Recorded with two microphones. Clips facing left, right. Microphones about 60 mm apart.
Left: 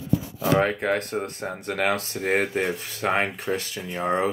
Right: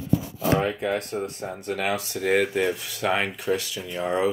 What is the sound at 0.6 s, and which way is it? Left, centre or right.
Speech, left.